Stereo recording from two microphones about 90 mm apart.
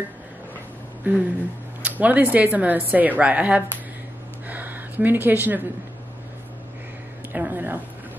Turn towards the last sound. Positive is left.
turn(degrees=-20)  # may be behind; listen again after turning